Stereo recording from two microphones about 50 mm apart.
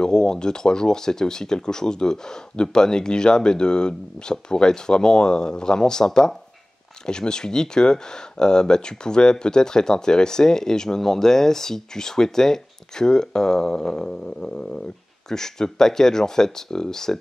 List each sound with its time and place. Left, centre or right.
0.0 s speech: centre